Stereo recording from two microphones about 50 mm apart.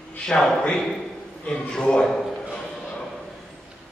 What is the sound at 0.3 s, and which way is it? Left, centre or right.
A man's voice, centre.